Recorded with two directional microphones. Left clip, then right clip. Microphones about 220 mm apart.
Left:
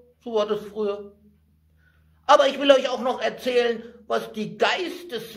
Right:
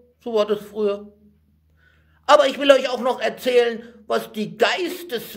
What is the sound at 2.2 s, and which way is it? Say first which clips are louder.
A man's voice: right 2 dB; 40° right (ahead or behind).